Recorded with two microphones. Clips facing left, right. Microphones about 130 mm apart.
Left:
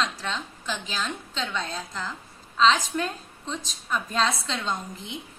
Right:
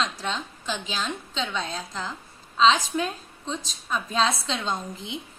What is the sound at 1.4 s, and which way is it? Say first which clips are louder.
Speech: right 1 dB; 15° right (ahead or behind).